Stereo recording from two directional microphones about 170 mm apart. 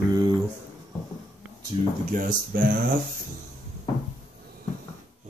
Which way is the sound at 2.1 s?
55° right (ahead or behind).